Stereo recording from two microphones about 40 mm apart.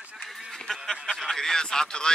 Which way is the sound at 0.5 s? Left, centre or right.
Centre.